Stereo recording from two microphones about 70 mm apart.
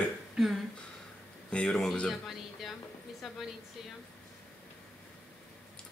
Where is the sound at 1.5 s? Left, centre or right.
Centre.